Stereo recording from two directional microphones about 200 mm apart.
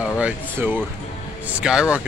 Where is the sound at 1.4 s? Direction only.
5° right (ahead or behind).